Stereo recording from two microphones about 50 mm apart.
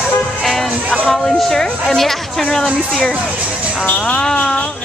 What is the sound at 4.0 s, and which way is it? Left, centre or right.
Speech, centre.